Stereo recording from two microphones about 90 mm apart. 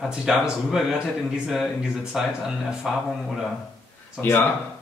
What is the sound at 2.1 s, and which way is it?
Speech, 5° right (ahead or behind).